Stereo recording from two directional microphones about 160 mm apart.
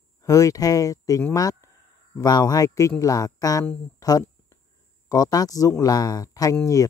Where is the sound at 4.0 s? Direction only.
25° left (ahead or behind).